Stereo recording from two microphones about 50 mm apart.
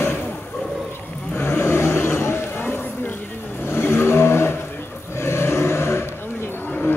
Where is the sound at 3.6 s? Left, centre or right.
Left.